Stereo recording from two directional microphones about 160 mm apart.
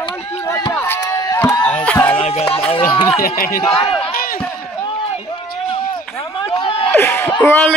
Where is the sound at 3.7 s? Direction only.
35° left (ahead or behind).